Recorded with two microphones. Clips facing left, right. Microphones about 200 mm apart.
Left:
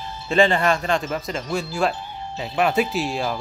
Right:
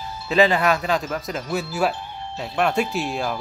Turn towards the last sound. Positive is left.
turn(degrees=0)  # may be behind; listen again after turning